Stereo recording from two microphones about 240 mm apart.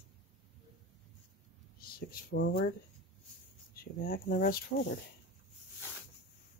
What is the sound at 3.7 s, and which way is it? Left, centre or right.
Speech, left.